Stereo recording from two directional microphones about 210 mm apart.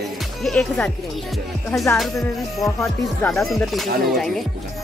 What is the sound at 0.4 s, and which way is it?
Speech, 5° left (ahead or behind).